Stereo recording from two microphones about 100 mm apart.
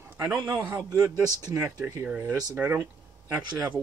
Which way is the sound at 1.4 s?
30° right (ahead or behind).